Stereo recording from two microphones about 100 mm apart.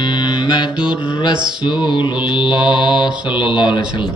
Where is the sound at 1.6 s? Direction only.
50° left (ahead or behind).